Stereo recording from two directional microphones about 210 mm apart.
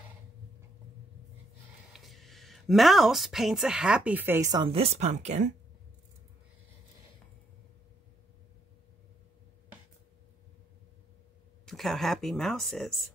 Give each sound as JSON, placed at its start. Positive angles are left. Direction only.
{"t": 1.9, "sound": "speech", "side_deg": 0}
{"t": 11.6, "sound": "speech", "side_deg": 0}